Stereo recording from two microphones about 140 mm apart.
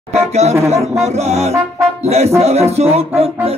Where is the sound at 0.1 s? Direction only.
50° right (ahead or behind).